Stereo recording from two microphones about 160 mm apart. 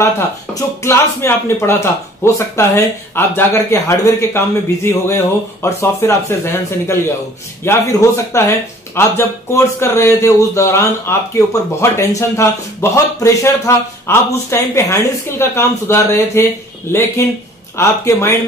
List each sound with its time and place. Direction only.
0.6 s a man's voice: 15° left (ahead or behind)